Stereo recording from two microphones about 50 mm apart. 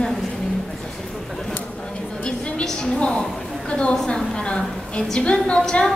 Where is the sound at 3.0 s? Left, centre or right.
Centre.